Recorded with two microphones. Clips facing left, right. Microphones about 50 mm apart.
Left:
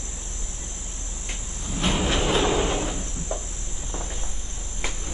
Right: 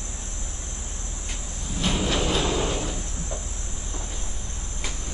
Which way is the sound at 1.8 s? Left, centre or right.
Left.